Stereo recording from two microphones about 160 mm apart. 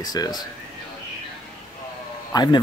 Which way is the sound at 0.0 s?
25° left (ahead or behind).